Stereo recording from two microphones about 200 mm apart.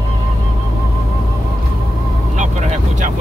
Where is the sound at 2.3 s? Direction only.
40° right (ahead or behind).